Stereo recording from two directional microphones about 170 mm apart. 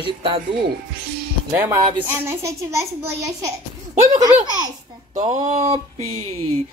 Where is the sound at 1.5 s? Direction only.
10° right (ahead or behind).